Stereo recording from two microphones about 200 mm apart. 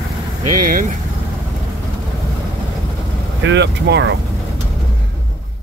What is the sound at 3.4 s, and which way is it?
Speech, 60° right (ahead or behind).